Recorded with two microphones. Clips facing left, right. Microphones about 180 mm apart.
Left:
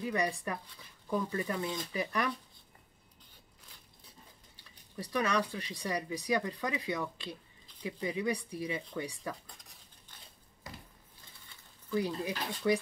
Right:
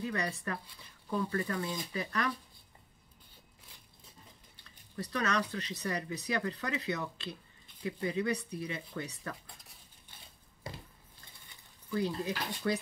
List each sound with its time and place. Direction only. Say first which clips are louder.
0.0 s speech: left 3 dB; 15° left (ahead or behind)
4.6 s speech: right 2 dB; 15° left (ahead or behind)
11.9 s speech: even; 15° left (ahead or behind)